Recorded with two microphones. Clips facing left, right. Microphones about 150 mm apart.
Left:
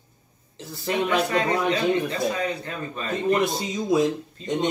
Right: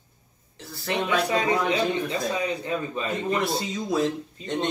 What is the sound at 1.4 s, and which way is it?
A man's voice, 15° right (ahead or behind).